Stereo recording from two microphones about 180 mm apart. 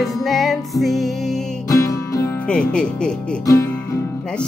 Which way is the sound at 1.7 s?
20° left (ahead or behind).